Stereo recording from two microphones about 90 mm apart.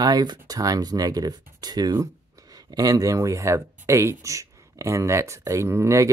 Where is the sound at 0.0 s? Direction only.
45° right (ahead or behind).